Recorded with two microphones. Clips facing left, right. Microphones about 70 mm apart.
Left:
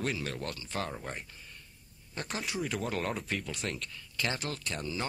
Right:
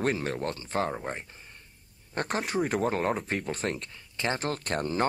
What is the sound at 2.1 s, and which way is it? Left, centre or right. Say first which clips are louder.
Speech: right 7 dB; right.